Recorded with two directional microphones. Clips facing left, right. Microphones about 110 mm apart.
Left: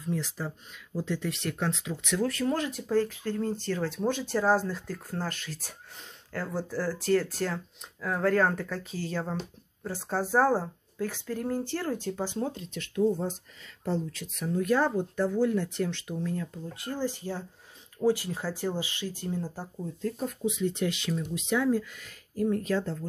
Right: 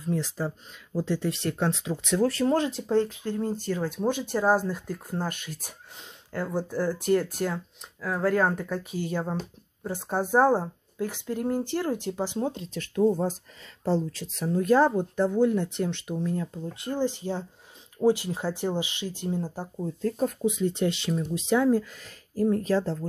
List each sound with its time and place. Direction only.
0.1 s speech: 40° right (ahead or behind); by 12.6 s 20° right (ahead or behind)
12.6 s speech: 40° right (ahead or behind); by 19.7 s 20° right (ahead or behind)
19.8 s speech: 45° right (ahead or behind)